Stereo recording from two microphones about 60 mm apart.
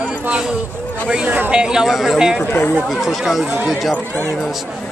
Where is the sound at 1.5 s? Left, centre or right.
Centre.